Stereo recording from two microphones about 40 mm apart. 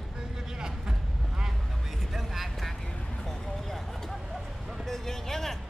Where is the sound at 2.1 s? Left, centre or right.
Centre.